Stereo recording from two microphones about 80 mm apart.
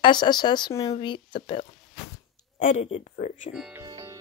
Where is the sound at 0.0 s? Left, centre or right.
Left.